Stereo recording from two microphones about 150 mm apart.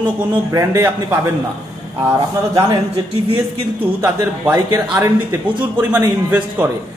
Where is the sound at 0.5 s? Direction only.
20° right (ahead or behind).